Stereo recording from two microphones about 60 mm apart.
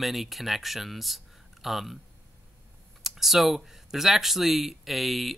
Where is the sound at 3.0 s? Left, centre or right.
Centre.